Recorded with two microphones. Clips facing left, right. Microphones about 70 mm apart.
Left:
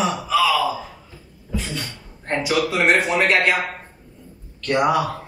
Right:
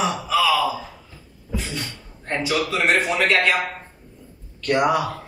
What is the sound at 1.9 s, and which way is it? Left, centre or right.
Speech, left.